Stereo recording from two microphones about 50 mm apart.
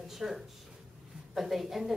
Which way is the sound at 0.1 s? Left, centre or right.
Centre.